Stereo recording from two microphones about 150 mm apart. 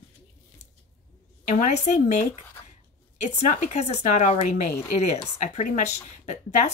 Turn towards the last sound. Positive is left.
turn(degrees=50)  # may be behind; listen again after turning